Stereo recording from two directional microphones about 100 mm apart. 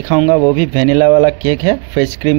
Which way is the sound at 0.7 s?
30° right (ahead or behind).